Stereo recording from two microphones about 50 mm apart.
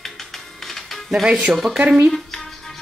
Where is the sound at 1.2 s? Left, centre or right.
Right.